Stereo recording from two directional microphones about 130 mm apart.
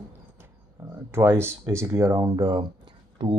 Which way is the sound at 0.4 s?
20° right (ahead or behind).